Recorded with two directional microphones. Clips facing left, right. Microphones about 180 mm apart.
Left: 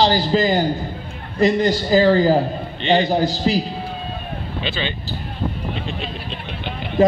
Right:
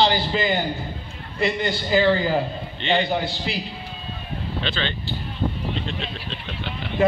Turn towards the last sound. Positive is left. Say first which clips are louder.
# left 4 dB
turn(degrees=35)  # may be behind; listen again after turning